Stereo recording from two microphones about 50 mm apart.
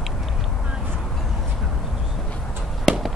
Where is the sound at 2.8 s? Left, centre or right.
Centre.